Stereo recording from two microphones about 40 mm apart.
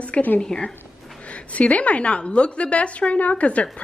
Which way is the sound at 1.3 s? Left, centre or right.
Left.